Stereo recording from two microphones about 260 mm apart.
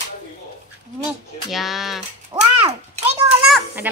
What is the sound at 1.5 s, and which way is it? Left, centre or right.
Speech, centre.